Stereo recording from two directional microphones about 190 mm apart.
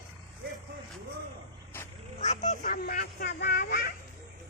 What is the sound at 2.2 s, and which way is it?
Speech, 35° left (ahead or behind).